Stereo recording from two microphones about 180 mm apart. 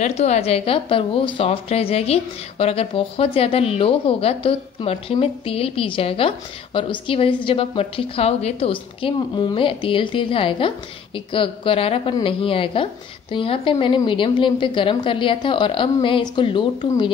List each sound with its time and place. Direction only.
0.0 s a woman's voice: 35° left (ahead or behind)